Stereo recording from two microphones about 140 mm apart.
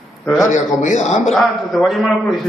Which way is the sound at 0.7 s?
60° left (ahead or behind).